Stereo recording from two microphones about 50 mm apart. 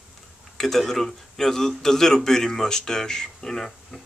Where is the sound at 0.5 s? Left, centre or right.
Centre.